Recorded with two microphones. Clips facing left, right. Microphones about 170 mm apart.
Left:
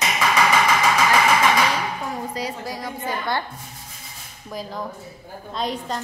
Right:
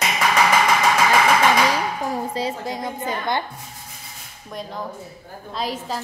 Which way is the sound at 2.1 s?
25° right (ahead or behind).